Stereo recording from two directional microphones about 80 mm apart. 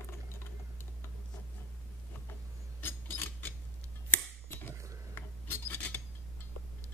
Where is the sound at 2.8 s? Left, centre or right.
Left.